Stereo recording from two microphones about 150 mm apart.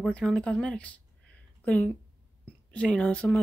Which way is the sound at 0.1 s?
5° left (ahead or behind).